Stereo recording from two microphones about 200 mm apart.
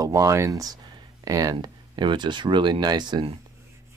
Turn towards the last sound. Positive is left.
turn(degrees=-25)  # may be behind; listen again after turning